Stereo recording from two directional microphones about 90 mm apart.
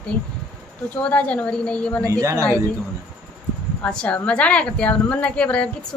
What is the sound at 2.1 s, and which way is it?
Speech, 35° right (ahead or behind).